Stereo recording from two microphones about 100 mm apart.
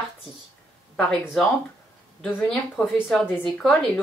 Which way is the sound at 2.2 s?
15° left (ahead or behind).